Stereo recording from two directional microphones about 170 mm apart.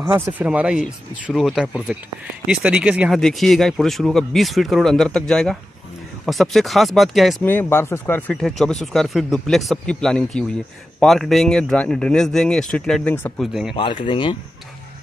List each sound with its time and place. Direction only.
0.0 s speech: 15° right (ahead or behind)
7.4 s speech: 15° left (ahead or behind)
13.4 s speech: centre (ahead or behind)
13.7 s speech: 30° left (ahead or behind)